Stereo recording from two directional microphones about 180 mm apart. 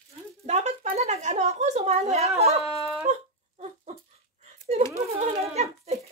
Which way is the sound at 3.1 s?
40° right (ahead or behind).